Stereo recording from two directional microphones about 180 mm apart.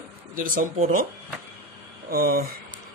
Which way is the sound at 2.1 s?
55° right (ahead or behind).